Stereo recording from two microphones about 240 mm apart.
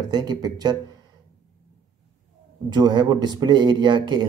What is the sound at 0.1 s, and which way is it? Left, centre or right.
Speech, centre.